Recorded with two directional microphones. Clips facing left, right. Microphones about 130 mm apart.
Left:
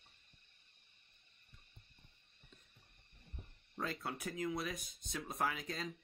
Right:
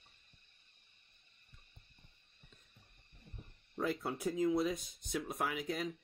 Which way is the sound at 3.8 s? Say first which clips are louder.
Right 6 dB; 15° right (ahead or behind).